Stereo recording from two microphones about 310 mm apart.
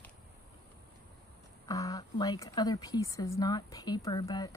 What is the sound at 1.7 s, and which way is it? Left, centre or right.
Speech, centre.